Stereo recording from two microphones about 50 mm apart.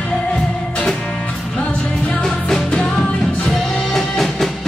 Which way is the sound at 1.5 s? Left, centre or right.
Centre.